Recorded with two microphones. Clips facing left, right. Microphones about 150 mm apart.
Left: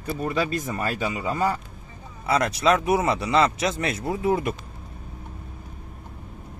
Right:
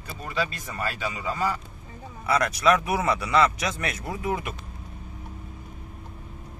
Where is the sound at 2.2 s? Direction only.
25° left (ahead or behind).